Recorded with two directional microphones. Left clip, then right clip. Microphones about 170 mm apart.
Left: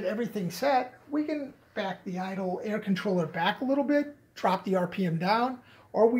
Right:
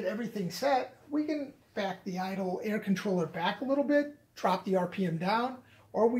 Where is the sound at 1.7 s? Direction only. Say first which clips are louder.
Left 1 dB; 5° right (ahead or behind).